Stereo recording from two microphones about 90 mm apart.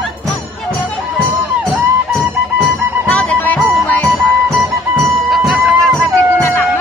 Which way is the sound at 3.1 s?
15° left (ahead or behind).